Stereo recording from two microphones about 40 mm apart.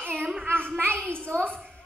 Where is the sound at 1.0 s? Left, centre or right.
Left.